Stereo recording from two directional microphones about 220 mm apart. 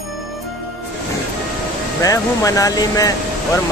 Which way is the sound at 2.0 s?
15° left (ahead or behind).